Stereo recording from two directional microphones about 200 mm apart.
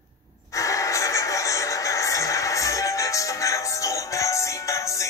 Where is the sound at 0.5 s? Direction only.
15° left (ahead or behind).